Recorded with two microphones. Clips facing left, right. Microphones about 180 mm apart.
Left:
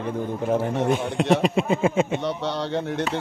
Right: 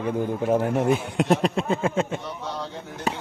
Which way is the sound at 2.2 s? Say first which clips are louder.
Left 6 dB; 75° left (ahead or behind).